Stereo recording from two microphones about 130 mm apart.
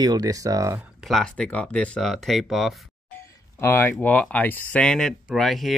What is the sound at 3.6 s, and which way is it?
Speech, 15° left (ahead or behind).